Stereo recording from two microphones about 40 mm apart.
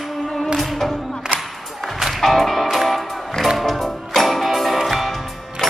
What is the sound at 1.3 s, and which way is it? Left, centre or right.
Music, right.